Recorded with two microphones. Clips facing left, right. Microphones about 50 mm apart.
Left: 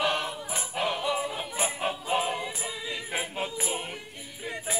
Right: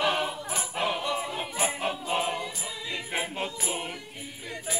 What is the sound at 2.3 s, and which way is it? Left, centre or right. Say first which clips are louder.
Choir: left 1 dB; centre.